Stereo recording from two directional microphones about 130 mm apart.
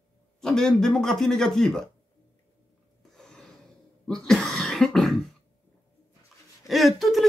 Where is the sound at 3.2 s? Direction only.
5° left (ahead or behind).